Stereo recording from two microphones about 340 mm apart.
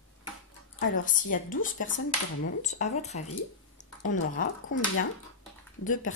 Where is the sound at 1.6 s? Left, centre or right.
Left.